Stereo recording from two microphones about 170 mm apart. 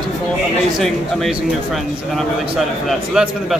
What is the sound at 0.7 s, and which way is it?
Speech, centre (ahead or behind).